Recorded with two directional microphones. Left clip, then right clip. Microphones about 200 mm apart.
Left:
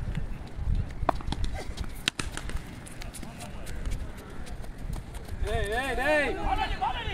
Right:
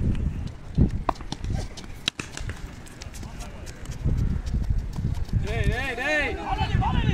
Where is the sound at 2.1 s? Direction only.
5° left (ahead or behind).